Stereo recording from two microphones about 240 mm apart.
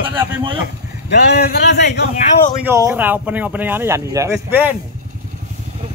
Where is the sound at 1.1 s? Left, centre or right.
Left.